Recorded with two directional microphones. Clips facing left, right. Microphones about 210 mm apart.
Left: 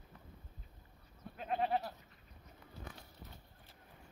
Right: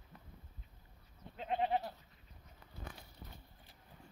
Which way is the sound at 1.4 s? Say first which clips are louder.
Even; 20° right (ahead or behind).